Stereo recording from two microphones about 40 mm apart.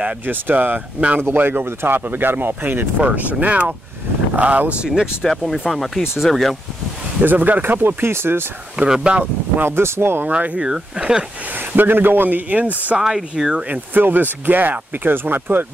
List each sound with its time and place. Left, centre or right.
0.3 s speech: right
3.0 s speech: right
4.8 s speech: centre
5.2 s speech: centre
7.2 s speech: right
7.6 s speech: right
8.7 s speech: right
9.7 s speech: right
10.2 s speech: right
10.6 s speech: centre
11.7 s speech: right
13.0 s speech: centre
13.7 s speech: right